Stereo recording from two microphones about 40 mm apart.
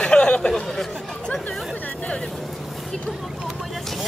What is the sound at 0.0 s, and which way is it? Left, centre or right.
Chatter, left.